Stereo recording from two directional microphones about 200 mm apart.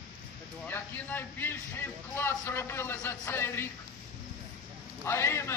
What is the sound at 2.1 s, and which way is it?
Speech, 10° left (ahead or behind).